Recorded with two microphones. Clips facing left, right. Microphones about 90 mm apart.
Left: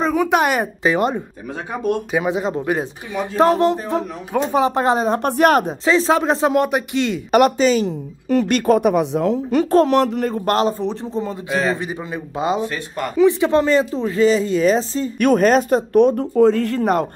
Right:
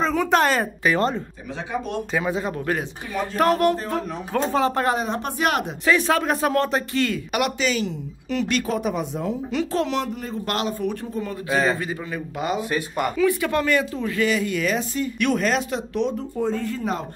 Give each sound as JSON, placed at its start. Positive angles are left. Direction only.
{"t": 0.0, "sound": "a woman's voice", "side_deg": 10}
{"t": 4.9, "sound": "a woman's voice", "side_deg": 40}
{"t": 5.9, "sound": "speech", "side_deg": 25}
{"t": 7.2, "sound": "a woman's voice", "side_deg": 40}
{"t": 9.5, "sound": "a woman's voice", "side_deg": 45}
{"t": 10.0, "sound": "speech", "side_deg": 65}
{"t": 10.4, "sound": "speech", "side_deg": 35}
{"t": 11.5, "sound": "a man's voice", "side_deg": 0}
{"t": 11.8, "sound": "speech", "side_deg": 20}
{"t": 12.6, "sound": "speech", "side_deg": -10}
{"t": 13.1, "sound": "speech", "side_deg": 25}
{"t": 15.1, "sound": "a woman's voice", "side_deg": 45}
{"t": 16.3, "sound": "speech", "side_deg": 85}